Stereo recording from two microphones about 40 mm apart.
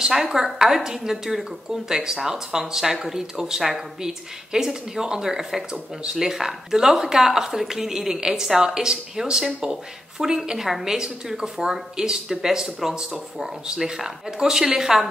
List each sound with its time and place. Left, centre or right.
0.1 s a woman's voice: centre
13.7 s a woman's voice: centre